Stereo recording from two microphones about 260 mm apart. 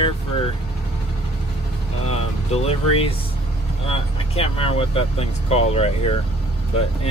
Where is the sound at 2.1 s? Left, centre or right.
Left.